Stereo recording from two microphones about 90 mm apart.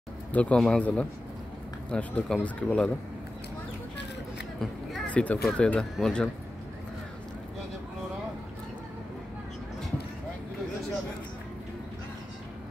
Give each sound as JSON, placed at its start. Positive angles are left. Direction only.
{"t": 0.3, "sound": "a man's voice", "side_deg": 15}
{"t": 5.0, "sound": "a man's voice", "side_deg": 15}